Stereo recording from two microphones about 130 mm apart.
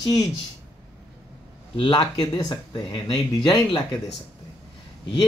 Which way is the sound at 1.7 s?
35° left (ahead or behind).